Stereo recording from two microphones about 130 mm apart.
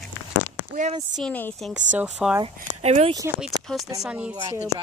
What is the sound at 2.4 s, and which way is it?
Speech, 50° right (ahead or behind).